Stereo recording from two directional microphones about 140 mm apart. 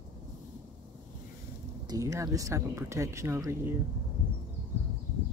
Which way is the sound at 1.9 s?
20° right (ahead or behind).